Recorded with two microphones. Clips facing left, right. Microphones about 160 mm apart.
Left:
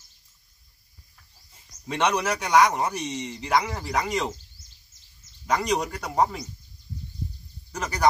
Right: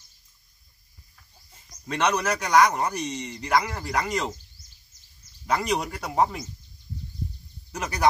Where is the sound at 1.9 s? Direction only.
5° left (ahead or behind).